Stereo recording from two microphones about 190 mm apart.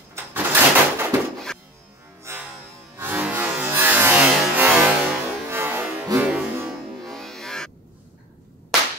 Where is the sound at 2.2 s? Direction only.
10° right (ahead or behind).